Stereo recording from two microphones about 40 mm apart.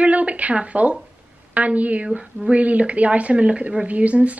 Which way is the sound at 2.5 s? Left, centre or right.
Right.